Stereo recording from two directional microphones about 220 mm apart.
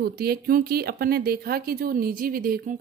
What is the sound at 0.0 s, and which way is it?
A woman's voice, 45° right (ahead or behind).